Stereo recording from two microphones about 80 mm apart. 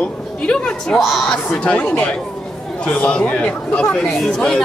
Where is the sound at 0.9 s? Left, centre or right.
Centre.